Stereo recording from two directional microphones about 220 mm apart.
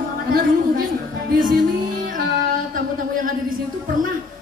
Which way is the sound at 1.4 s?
40° right (ahead or behind).